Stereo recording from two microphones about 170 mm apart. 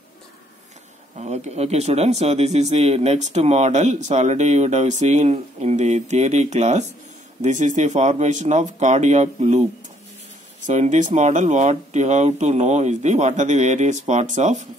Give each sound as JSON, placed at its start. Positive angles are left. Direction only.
{"t": 1.1, "sound": "speech", "side_deg": -40}
{"t": 10.7, "sound": "speech", "side_deg": -45}